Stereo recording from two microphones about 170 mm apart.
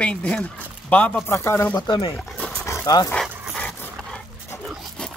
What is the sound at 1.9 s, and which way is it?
Speech, 30° left (ahead or behind).